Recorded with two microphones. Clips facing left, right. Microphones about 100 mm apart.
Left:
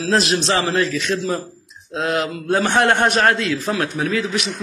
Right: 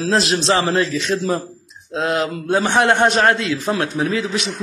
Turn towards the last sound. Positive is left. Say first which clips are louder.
# right 1 dB
turn(degrees=-30)  # may be behind; listen again after turning